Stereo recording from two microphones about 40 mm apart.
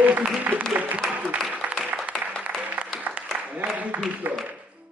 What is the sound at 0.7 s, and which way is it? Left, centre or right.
Speech, right.